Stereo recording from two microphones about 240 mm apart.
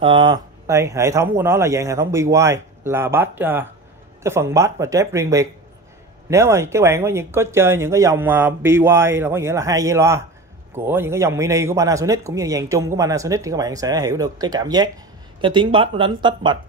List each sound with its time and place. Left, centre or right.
0.0 s a man's voice: centre